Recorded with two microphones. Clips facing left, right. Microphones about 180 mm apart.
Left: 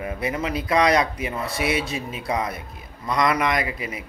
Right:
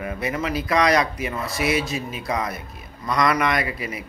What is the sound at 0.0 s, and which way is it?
A man's voice, 25° left (ahead or behind).